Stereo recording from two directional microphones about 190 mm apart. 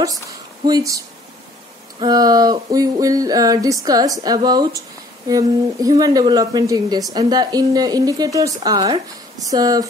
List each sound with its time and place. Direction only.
0.0 s speech: 20° right (ahead or behind)